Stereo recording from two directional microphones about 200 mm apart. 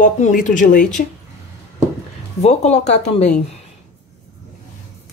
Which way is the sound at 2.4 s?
35° left (ahead or behind).